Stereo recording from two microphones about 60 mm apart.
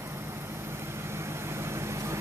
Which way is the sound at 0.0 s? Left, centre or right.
Right.